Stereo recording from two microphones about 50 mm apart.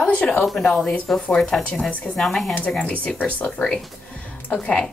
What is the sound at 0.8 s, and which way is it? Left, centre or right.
Speech, centre.